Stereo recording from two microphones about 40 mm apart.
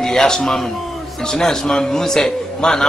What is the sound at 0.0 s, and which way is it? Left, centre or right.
A man's voice, centre.